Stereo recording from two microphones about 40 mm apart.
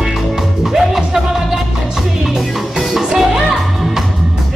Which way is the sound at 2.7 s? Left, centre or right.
Centre.